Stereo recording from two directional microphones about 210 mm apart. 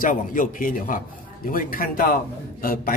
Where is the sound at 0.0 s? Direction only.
40° left (ahead or behind).